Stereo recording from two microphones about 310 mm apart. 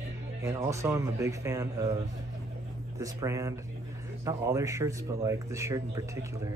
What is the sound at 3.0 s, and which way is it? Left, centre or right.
Speech, centre.